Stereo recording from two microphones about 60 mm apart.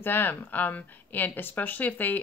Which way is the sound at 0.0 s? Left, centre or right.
Left.